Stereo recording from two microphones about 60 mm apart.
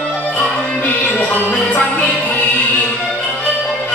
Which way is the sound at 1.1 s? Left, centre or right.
Left.